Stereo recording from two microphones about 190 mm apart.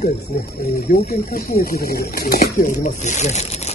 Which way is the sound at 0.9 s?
40° left (ahead or behind).